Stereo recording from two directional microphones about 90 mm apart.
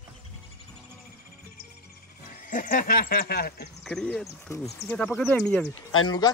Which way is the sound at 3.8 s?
10° left (ahead or behind).